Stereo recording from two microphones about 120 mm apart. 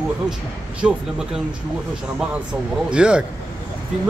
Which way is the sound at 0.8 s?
10° right (ahead or behind).